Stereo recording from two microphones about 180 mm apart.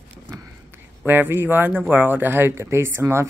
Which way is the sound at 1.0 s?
10° right (ahead or behind).